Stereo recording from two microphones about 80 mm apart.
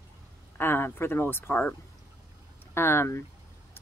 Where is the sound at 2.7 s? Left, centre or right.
Left.